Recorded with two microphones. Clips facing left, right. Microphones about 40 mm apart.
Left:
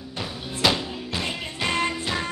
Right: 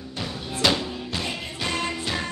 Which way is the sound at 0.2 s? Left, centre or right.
Centre.